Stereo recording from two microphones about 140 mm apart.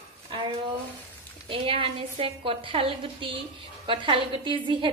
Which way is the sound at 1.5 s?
40° right (ahead or behind).